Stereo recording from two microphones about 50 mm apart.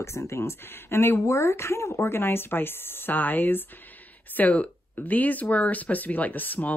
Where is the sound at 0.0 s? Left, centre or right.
Left.